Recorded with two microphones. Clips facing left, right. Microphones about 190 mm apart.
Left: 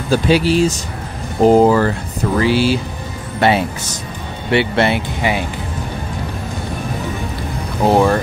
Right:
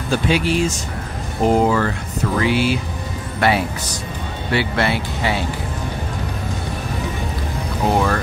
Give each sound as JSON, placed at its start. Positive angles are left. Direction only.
{"t": 0.1, "sound": "speech", "side_deg": 35}
{"t": 7.9, "sound": "speech", "side_deg": 30}